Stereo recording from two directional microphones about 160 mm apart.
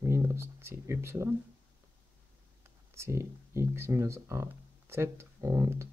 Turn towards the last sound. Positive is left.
turn(degrees=-15)  # may be behind; listen again after turning